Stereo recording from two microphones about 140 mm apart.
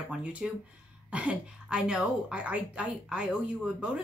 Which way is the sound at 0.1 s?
10° right (ahead or behind).